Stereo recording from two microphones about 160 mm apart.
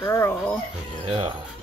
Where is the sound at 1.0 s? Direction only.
35° right (ahead or behind).